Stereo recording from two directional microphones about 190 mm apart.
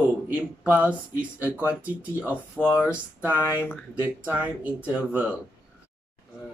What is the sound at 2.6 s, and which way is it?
Speech, 10° left (ahead or behind).